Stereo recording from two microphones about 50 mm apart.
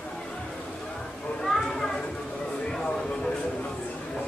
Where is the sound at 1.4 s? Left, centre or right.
Centre.